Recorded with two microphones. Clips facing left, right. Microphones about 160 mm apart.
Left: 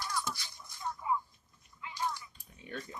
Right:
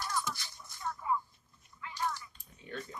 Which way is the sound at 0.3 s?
15° left (ahead or behind).